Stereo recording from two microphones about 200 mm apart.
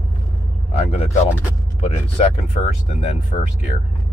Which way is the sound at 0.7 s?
30° left (ahead or behind).